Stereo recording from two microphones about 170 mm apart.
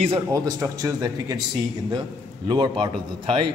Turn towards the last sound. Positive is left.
turn(degrees=-30)  # may be behind; listen again after turning